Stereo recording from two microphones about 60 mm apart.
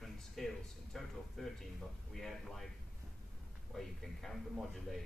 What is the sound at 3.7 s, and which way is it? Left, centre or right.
A man's voice, centre.